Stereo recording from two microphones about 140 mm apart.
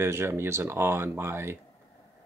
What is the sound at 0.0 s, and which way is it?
Speech, 20° right (ahead or behind).